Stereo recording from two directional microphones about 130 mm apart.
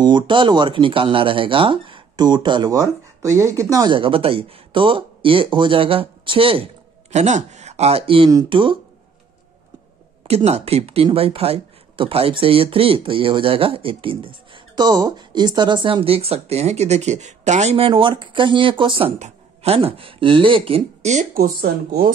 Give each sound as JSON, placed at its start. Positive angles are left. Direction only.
{"t": 0.0, "sound": "speech", "side_deg": -35}
{"t": 3.9, "sound": "speech", "side_deg": -45}
{"t": 10.2, "sound": "speech", "side_deg": -55}
{"t": 19.1, "sound": "speech", "side_deg": -55}
{"t": 21.1, "sound": "speech", "side_deg": -70}